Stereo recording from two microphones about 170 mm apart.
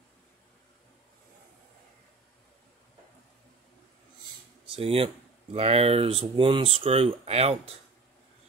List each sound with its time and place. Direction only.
4.7 s speech: 35° right (ahead or behind)